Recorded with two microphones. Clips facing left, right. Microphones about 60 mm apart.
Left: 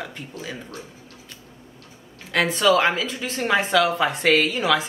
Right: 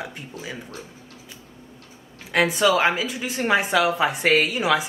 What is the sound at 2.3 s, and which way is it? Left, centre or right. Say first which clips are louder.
Speech: even; centre.